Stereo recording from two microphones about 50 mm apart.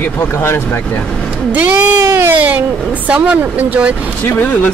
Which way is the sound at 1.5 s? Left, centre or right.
Right.